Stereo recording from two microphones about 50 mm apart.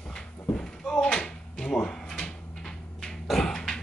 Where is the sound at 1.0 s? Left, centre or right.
Centre.